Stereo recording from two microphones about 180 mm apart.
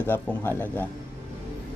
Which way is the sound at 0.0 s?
10° left (ahead or behind).